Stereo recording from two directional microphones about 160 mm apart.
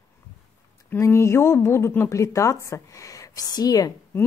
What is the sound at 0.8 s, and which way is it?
Speech, 15° left (ahead or behind).